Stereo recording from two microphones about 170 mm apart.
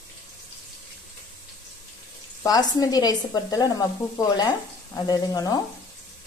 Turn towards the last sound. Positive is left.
turn(degrees=20)  # may be behind; listen again after turning